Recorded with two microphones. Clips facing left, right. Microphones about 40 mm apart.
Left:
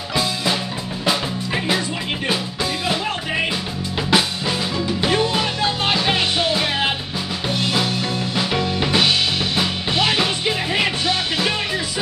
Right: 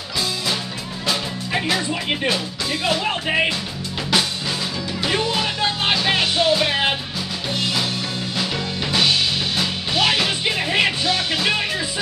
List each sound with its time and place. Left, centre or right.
4.1 s music: centre
5.1 s music: centre
8.5 s music: centre
10.4 s music: centre